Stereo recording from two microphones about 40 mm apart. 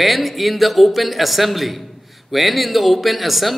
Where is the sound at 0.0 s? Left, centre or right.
Centre.